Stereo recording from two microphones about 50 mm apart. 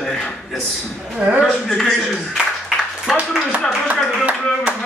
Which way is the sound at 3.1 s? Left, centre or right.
Centre.